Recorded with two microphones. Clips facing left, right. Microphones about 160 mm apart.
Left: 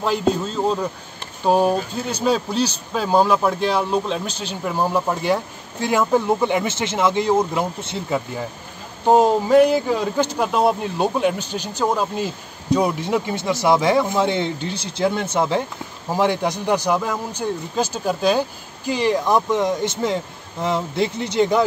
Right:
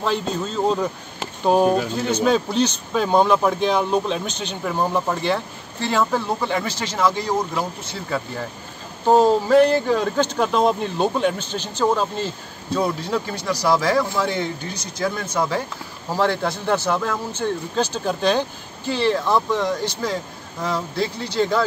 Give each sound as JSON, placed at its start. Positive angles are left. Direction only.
{"t": 0.0, "sound": "speech", "side_deg": 5}
{"t": 9.0, "sound": "speech", "side_deg": 10}